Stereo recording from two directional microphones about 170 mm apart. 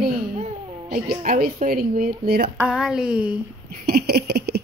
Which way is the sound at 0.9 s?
60° right (ahead or behind).